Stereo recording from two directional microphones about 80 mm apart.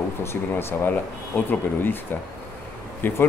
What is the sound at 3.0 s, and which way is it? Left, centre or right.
Speech, left.